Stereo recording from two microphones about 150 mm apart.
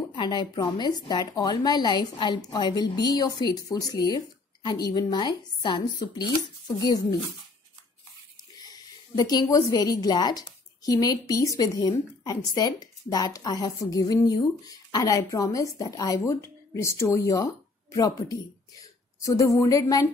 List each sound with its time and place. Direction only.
0.1 s speech: 30° left (ahead or behind)
8.6 s speech: 25° left (ahead or behind)